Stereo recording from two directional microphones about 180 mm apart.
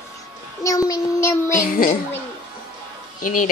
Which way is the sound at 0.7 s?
20° left (ahead or behind).